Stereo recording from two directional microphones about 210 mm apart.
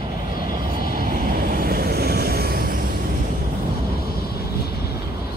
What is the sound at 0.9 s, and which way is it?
Vehicle, 40° right (ahead or behind).